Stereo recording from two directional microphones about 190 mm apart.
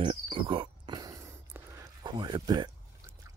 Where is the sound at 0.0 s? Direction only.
25° right (ahead or behind).